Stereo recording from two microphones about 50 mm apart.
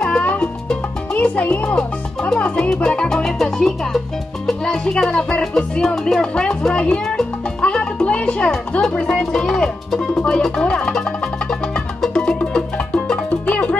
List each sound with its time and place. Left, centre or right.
0.2 s music: left
1.8 s speech: centre
2.9 s music: centre
4.5 s speech: centre
6.8 s music: centre
8.9 s speech: centre
10.2 s music: centre